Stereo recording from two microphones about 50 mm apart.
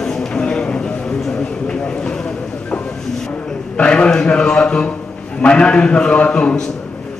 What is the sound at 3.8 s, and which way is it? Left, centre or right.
A man's voice, centre.